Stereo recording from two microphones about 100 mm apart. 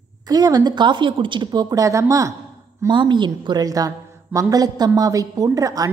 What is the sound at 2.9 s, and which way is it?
A woman's voice, 50° right (ahead or behind).